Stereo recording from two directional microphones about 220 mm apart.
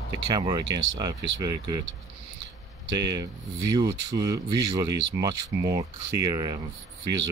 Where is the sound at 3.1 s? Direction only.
15° right (ahead or behind).